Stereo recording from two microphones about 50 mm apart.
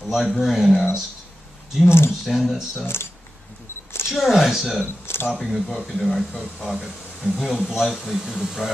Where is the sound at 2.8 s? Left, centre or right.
Left.